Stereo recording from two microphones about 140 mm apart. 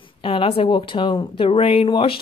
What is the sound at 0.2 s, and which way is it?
A woman's voice, 40° left (ahead or behind).